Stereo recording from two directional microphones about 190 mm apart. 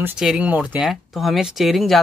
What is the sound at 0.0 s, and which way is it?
Speech, 5° right (ahead or behind).